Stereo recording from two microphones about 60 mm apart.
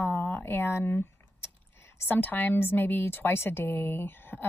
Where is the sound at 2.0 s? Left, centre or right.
Left.